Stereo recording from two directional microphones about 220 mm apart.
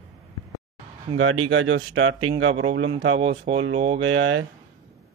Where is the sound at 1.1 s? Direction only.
70° right (ahead or behind).